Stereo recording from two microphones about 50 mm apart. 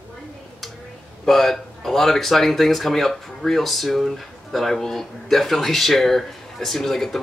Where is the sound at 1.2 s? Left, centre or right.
Centre.